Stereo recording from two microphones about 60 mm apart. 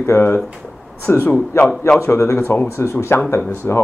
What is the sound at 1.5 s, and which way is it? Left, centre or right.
A man's voice, left.